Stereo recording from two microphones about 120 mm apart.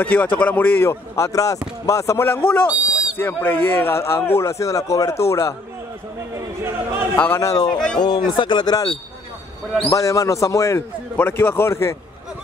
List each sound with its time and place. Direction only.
0.0 s a man's voice: 15° left (ahead or behind)
2.7 s a sound: 10° right (ahead or behind)
3.2 s a man's voice: 15° left (ahead or behind)
6.3 s speech: 20° right (ahead or behind)
7.3 s a man's voice: 30° left (ahead or behind)